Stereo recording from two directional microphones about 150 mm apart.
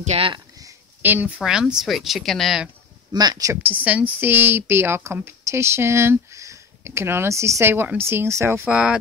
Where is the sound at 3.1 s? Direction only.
25° right (ahead or behind).